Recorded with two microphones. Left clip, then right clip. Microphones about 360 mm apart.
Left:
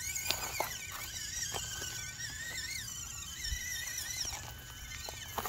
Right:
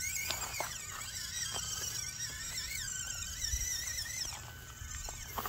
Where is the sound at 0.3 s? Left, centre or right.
Left.